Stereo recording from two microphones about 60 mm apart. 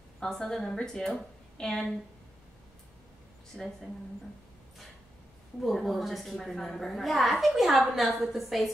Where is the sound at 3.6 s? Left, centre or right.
Centre.